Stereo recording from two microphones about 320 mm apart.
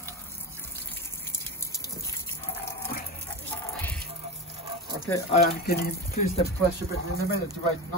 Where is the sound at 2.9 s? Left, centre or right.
Left.